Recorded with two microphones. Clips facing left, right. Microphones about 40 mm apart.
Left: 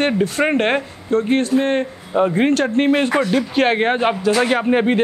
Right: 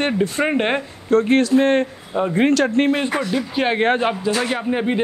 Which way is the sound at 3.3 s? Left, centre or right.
Left.